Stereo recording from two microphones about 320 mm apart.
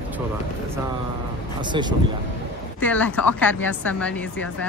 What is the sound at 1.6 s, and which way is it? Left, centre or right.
Speech, centre.